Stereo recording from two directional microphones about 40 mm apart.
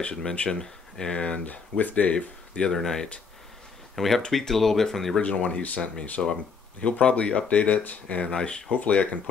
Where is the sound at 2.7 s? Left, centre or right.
Centre.